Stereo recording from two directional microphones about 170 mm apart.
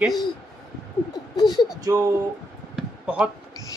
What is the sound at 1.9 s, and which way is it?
Speech, 20° right (ahead or behind).